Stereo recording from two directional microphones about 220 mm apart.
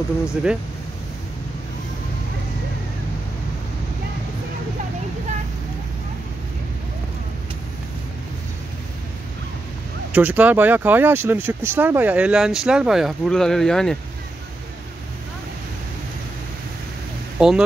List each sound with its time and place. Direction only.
0.3 s speech: 5° right (ahead or behind)
10.1 s speech: 5° right (ahead or behind)
17.4 s speech: 5° right (ahead or behind)